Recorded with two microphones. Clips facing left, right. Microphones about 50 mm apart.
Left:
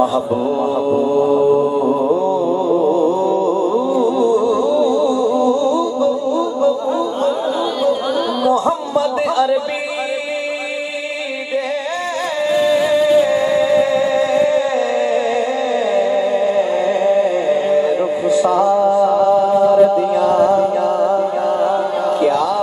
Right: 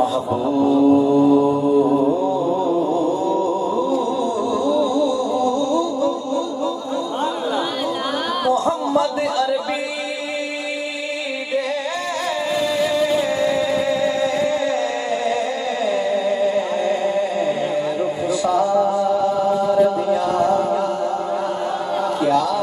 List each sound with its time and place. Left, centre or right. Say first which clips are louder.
0.0 s music: left 3 dB; centre
12.4 s music: left 7 dB; centre
18.3 s music: left 5 dB; centre
19.7 s chant: left 5 dB; centre